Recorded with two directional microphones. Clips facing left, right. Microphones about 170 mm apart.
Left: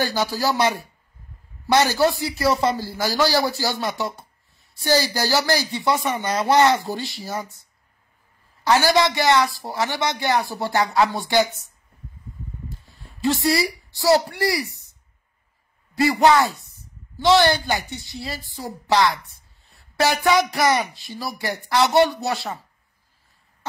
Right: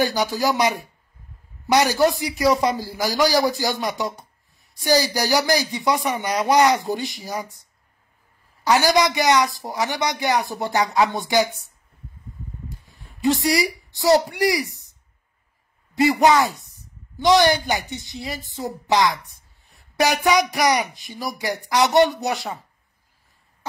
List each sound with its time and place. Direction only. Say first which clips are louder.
0.0 s a woman's voice: right 2 dB; 15° right (ahead or behind)
8.6 s a woman's voice: even; 15° right (ahead or behind)
12.6 s a sound: left 1 dB; 20° right (ahead or behind)
15.9 s a woman's voice: even; 20° right (ahead or behind)